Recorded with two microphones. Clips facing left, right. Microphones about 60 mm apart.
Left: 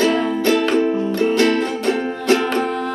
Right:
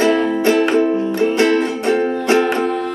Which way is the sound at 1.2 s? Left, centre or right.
Right.